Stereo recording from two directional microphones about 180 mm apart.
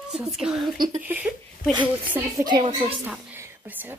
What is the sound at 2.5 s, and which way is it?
Speech, 25° right (ahead or behind).